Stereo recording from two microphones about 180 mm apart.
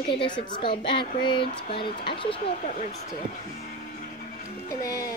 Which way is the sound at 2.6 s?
40° left (ahead or behind).